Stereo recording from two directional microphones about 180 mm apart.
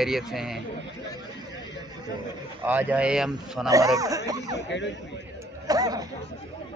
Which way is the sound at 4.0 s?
20° right (ahead or behind).